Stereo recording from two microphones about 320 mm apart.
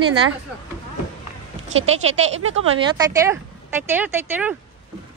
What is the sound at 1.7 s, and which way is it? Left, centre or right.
Speech, right.